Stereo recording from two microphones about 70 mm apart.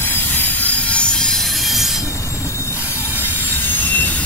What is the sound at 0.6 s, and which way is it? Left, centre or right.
Train wheels squealing, centre.